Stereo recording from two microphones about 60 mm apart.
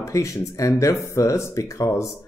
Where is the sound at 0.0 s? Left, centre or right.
Left.